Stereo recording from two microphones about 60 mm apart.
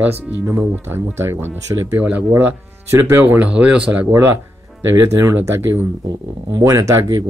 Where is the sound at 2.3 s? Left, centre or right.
Right.